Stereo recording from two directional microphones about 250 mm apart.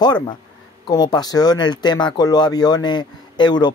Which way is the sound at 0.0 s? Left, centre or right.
Centre.